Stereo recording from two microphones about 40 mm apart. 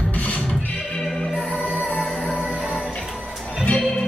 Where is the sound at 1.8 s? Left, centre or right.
Left.